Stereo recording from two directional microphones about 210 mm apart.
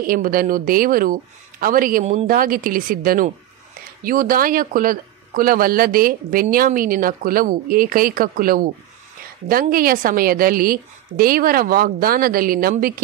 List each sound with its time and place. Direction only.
0.0 s a man's voice: 45° right (ahead or behind)